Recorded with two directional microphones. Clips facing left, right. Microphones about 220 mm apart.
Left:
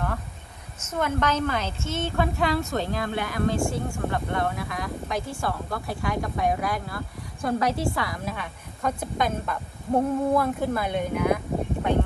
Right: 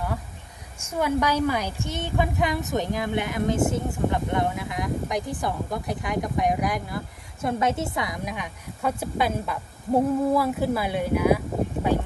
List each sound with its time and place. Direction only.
0.7 s a woman's voice: 10° right (ahead or behind)